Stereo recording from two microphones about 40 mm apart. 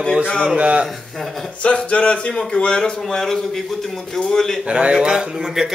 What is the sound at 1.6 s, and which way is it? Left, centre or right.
Speech, left.